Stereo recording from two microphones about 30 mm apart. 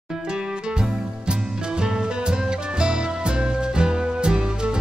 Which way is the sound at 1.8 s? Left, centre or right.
Right.